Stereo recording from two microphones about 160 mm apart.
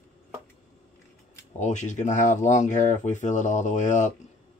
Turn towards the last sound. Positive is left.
turn(degrees=50)  # may be behind; listen again after turning